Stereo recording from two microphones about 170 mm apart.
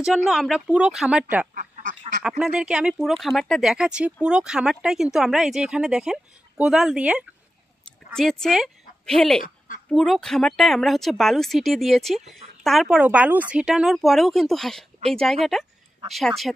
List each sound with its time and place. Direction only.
0.0 s speech: centre (ahead or behind)
1.5 s duck: 50° right (ahead or behind)
2.2 s a woman's voice: 5° right (ahead or behind)